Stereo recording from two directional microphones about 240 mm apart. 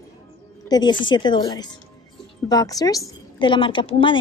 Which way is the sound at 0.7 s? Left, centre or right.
Centre.